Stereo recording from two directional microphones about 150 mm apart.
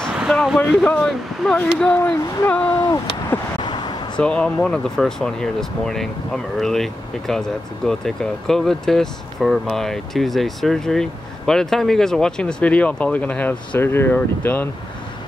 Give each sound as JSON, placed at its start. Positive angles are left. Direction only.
{"t": 0.1, "sound": "speech", "side_deg": -5}
{"t": 2.9, "sound": "vehicle", "side_deg": 25}
{"t": 4.2, "sound": "speech", "side_deg": 5}